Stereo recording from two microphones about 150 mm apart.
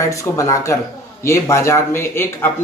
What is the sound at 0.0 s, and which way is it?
Speech, 20° left (ahead or behind).